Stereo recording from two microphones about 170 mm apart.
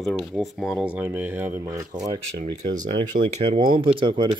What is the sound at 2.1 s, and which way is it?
Speech, 40° right (ahead or behind).